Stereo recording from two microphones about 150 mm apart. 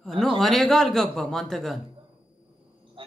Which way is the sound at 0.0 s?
Centre (ahead or behind).